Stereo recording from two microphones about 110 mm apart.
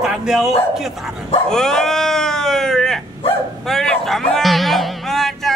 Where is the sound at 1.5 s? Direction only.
5° left (ahead or behind).